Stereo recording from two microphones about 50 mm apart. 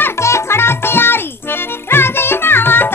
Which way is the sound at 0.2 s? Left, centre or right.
Left.